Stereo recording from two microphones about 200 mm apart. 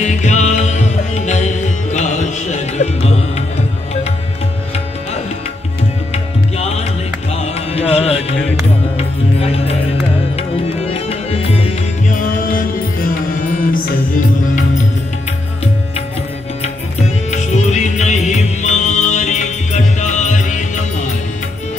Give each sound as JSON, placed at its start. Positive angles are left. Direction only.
{"t": 0.0, "sound": "music", "side_deg": 35}
{"t": 6.1, "sound": "tabla", "side_deg": 30}
{"t": 7.7, "sound": "music", "side_deg": 30}
{"t": 10.3, "sound": "music", "side_deg": 30}
{"t": 17.3, "sound": "music", "side_deg": 35}